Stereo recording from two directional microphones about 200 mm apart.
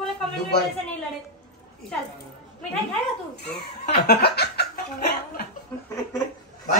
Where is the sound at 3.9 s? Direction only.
50° left (ahead or behind).